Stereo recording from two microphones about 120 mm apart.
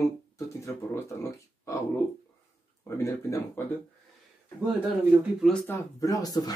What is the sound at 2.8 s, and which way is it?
Speech, 25° left (ahead or behind).